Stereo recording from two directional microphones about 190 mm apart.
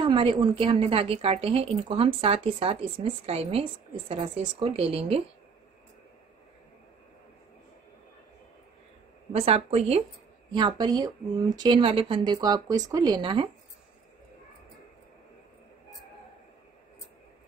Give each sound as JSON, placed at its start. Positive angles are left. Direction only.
{"t": 0.0, "sound": "a woman's voice", "side_deg": -25}
{"t": 9.3, "sound": "speech", "side_deg": -30}
{"t": 10.5, "sound": "a woman's voice", "side_deg": -25}